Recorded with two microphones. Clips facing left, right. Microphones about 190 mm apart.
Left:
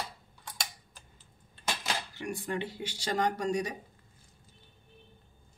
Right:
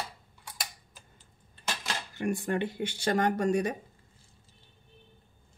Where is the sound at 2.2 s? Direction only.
50° right (ahead or behind).